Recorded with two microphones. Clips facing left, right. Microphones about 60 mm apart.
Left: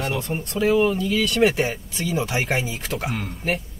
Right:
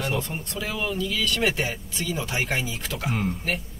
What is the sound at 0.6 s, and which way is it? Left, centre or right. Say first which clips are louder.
Speech: left 10 dB; left.